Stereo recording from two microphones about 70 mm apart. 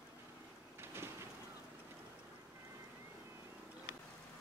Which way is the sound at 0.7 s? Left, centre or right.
Right.